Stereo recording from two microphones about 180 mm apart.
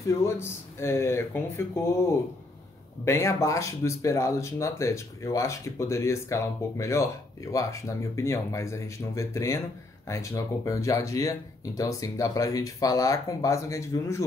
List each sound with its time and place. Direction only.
0.0 s speech: 15° left (ahead or behind)
3.1 s speech: 15° left (ahead or behind)